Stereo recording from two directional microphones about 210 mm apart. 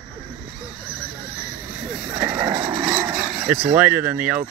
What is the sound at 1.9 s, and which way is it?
Vehicle, 5° right (ahead or behind).